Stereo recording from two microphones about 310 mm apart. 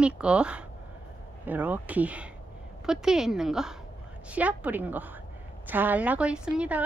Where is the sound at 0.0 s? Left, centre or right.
Centre.